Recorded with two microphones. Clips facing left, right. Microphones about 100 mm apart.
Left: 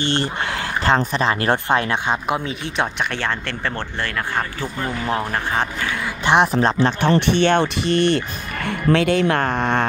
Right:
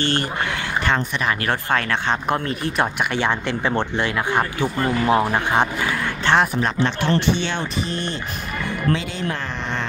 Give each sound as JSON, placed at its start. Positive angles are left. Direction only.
{"t": 0.0, "sound": "speech", "side_deg": 25}
{"t": 2.0, "sound": "speech", "side_deg": 5}
{"t": 4.7, "sound": "speech", "side_deg": 0}
{"t": 6.2, "sound": "speech", "side_deg": 15}
{"t": 6.5, "sound": "speech", "side_deg": 30}
{"t": 7.0, "sound": "speech", "side_deg": 60}